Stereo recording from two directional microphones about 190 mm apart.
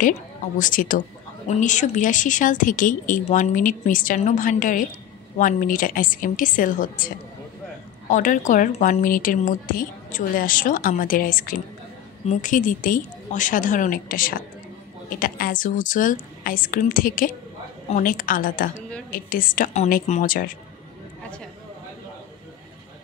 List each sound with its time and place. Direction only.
0.6 s a woman's voice: 45° left (ahead or behind)
8.1 s a woman's voice: 45° left (ahead or behind)